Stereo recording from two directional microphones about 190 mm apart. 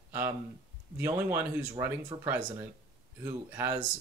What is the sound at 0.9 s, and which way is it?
Speech, 10° right (ahead or behind).